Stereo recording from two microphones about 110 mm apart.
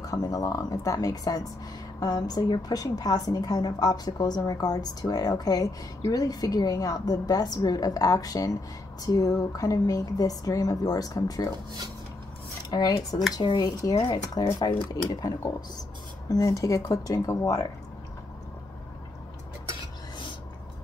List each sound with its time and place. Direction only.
0.0 s a woman's voice: 35° left (ahead or behind)
12.6 s speech: 40° left (ahead or behind)
13.4 s a woman's voice: 50° left (ahead or behind); by 17.6 s 25° left (ahead or behind)